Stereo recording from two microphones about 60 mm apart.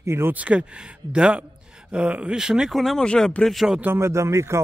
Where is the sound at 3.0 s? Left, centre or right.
Centre.